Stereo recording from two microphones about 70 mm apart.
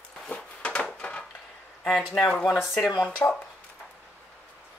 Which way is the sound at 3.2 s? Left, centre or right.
Left.